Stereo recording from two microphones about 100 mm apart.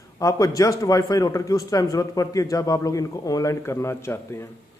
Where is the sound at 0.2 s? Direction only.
35° left (ahead or behind).